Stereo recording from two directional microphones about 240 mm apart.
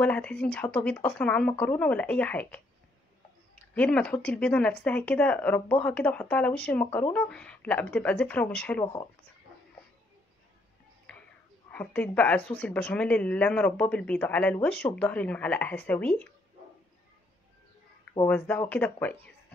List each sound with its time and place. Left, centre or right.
0.0 s speech: centre
3.7 s speech: centre
11.1 s a sound: centre
11.7 s speech: centre
18.2 s speech: centre